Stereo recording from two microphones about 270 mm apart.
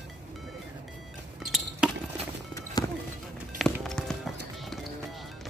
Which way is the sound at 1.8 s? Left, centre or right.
Centre.